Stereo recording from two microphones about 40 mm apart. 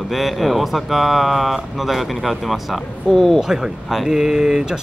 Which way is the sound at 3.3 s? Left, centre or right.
Centre.